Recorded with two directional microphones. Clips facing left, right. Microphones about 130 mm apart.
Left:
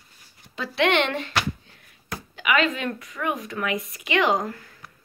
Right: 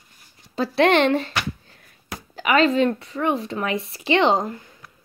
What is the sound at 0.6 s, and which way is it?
Speech, 35° right (ahead or behind).